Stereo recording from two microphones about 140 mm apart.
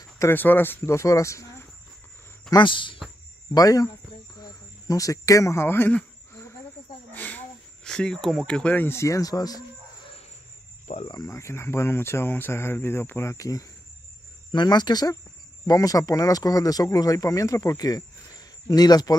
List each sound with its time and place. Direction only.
0.0 s speech: 20° left (ahead or behind)
2.5 s speech: 35° left (ahead or behind)
3.5 s speech: 25° left (ahead or behind)
4.4 s a sound: 25° left (ahead or behind)
7.1 s speech: 10° left (ahead or behind)
11.1 s speech: 25° left (ahead or behind)